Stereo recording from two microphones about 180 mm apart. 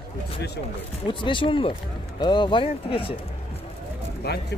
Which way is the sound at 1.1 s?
25° left (ahead or behind).